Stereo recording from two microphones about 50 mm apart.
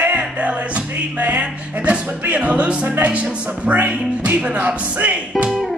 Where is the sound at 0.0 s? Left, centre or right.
Right.